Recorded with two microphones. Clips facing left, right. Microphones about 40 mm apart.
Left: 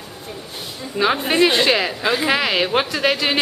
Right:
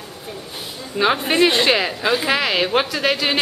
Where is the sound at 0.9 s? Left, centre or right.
Centre.